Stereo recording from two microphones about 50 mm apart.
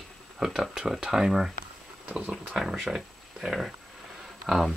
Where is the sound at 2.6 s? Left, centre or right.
Centre.